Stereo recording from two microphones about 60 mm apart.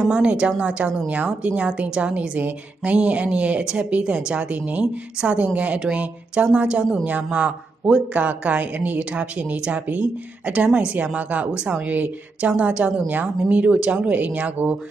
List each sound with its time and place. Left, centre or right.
0.1 s a woman's voice: centre